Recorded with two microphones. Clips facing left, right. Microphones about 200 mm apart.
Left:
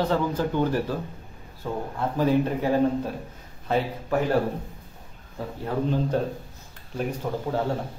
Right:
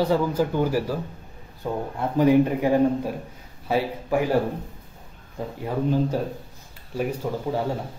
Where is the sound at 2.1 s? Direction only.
15° right (ahead or behind).